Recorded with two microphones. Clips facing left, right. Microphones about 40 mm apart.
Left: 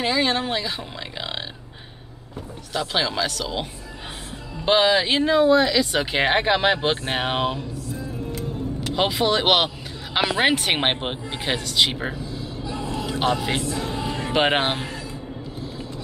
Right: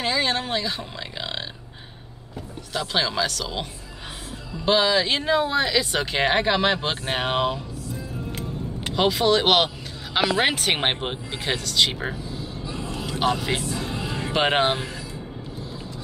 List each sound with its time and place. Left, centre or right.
0.0 s speech: centre
2.7 s speech: centre
4.6 s speech: left
5.1 s speech: centre
8.3 s music: right
8.9 s speech: centre
12.7 s vehicle: centre
13.2 s music: centre
14.3 s speech: centre